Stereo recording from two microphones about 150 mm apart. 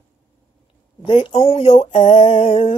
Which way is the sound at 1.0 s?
35° left (ahead or behind).